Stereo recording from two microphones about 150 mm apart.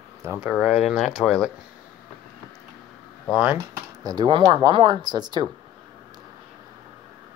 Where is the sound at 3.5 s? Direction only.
25° right (ahead or behind).